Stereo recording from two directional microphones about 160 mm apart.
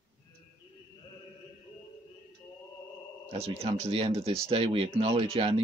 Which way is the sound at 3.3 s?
40° right (ahead or behind).